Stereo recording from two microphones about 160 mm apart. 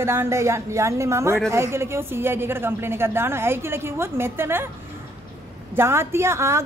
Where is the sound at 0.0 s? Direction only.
15° right (ahead or behind).